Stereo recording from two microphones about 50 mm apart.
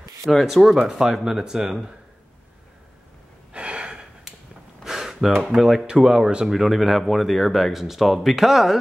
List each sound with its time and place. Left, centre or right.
0.2 s speech: centre
3.5 s gasp: right
4.8 s speech: centre